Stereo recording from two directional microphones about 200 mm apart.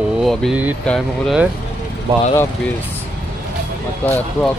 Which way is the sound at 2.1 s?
25° right (ahead or behind).